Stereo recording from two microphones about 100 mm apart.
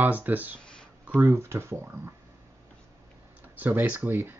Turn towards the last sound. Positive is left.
turn(degrees=-20)  # may be behind; listen again after turning